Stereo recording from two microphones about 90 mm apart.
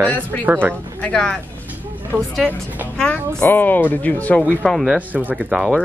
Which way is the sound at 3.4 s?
20° left (ahead or behind).